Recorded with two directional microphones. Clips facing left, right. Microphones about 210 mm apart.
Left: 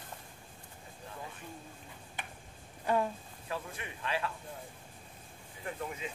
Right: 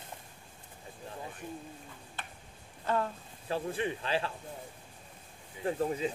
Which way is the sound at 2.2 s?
15° left (ahead or behind).